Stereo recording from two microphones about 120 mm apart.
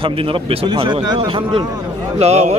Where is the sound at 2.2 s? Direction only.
65° right (ahead or behind).